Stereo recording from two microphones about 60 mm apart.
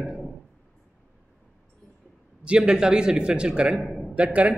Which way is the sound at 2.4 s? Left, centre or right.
Centre.